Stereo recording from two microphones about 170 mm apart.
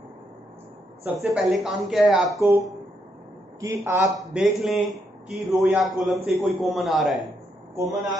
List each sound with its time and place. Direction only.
1.2 s a man's voice: centre (ahead or behind)
3.6 s a man's voice: 15° right (ahead or behind)
4.3 s a man's voice: centre (ahead or behind)
7.7 s speech: 20° right (ahead or behind)